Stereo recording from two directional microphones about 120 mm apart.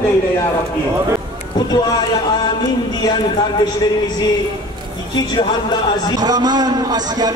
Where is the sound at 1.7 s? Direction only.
35° left (ahead or behind).